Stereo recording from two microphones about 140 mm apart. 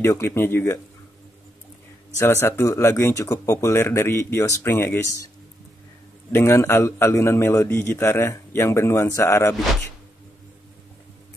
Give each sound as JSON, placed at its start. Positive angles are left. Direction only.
{"t": 0.0, "sound": "speech", "side_deg": 20}
{"t": 2.1, "sound": "a man's voice", "side_deg": 20}
{"t": 6.3, "sound": "a man's voice", "side_deg": 20}